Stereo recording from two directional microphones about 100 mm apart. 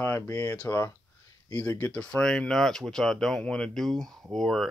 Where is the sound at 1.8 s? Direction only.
10° left (ahead or behind).